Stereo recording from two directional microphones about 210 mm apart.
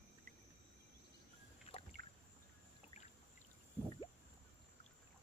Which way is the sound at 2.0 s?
45° right (ahead or behind).